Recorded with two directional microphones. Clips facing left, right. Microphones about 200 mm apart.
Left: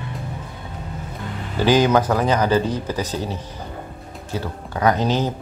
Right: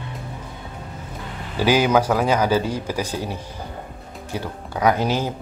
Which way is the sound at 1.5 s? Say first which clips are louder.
Left 1 dB; 10° right (ahead or behind).